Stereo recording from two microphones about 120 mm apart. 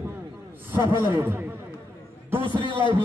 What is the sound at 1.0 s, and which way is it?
Speech, 20° right (ahead or behind).